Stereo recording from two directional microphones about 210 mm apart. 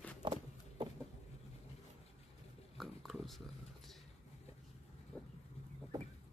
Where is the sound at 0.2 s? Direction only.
25° right (ahead or behind).